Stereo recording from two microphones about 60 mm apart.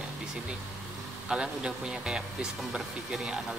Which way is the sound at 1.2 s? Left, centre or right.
Centre.